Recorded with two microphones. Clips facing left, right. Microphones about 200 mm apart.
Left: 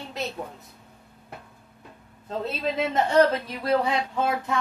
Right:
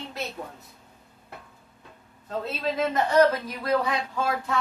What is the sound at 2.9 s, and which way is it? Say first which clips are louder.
Speech: even; 30° left (ahead or behind).